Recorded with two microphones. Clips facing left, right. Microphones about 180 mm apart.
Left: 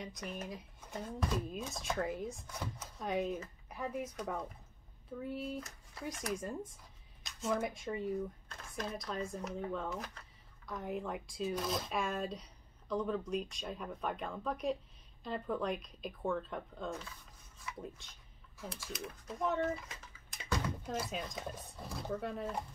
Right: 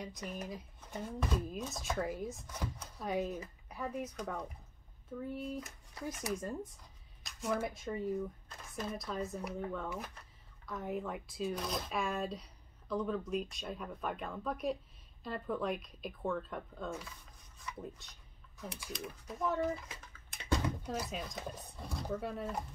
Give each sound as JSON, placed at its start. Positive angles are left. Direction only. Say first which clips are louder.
{"t": 0.0, "sound": "speech", "louder": "right 1 dB", "side_deg": 0}
{"t": 0.7, "sound": "a sound", "louder": "even", "side_deg": 10}
{"t": 1.3, "sound": "speech", "louder": "right 1 dB", "side_deg": 0}